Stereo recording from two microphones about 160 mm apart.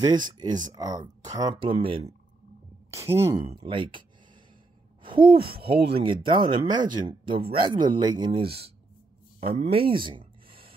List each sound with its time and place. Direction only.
0.0 s speech: 25° right (ahead or behind)
2.9 s speech: 15° right (ahead or behind)
3.5 s speech: 30° right (ahead or behind)
5.0 s a sound: 30° right (ahead or behind)
5.9 s speech: 30° right (ahead or behind)
9.4 s speech: 40° right (ahead or behind)